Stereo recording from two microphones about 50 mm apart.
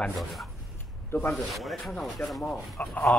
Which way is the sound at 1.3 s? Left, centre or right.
Centre.